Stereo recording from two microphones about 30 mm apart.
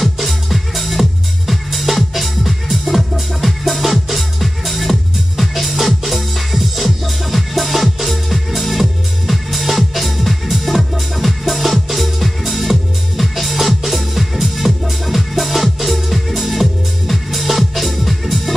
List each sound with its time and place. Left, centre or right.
0.0 s music: centre